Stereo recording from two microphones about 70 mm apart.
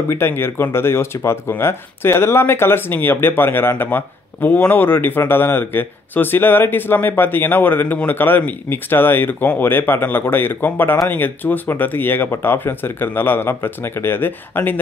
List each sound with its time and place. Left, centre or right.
0.1 s speech: left